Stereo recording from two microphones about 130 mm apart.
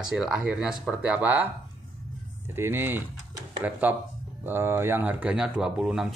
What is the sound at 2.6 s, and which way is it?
Speech, 15° right (ahead or behind).